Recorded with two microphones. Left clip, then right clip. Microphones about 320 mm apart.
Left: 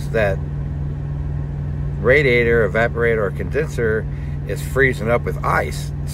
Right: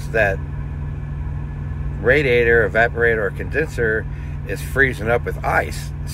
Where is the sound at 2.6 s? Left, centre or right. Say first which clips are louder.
Right 1 dB; centre.